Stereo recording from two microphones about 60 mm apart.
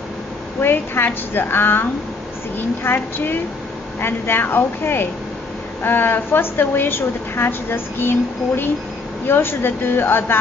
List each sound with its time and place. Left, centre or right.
0.6 s a woman's voice: left